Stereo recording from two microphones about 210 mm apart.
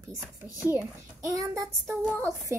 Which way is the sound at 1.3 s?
15° right (ahead or behind).